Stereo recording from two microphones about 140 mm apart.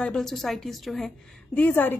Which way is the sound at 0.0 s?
5° left (ahead or behind).